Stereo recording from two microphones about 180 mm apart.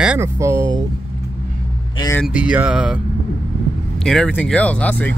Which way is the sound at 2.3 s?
5° right (ahead or behind).